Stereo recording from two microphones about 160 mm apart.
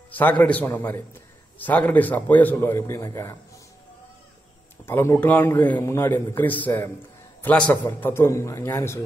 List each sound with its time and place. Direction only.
0.1 s a man's voice: 10° left (ahead or behind)
4.8 s a man's voice: 15° left (ahead or behind)